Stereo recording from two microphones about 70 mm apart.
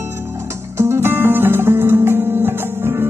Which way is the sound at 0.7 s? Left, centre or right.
Right.